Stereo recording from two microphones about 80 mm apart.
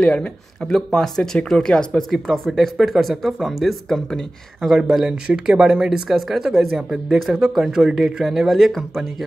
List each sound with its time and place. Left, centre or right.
0.0 s speech: centre